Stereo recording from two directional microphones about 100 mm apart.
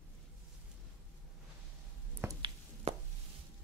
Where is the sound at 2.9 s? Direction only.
90° right.